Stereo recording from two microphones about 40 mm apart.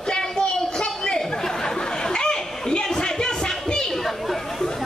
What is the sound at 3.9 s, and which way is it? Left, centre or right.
Chatter, centre.